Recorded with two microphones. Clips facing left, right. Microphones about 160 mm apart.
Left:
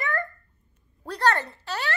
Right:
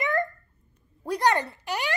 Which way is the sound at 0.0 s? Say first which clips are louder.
Right 4 dB; 20° right (ahead or behind).